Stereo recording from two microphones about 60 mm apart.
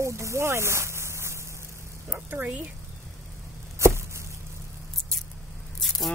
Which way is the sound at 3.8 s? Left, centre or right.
Right.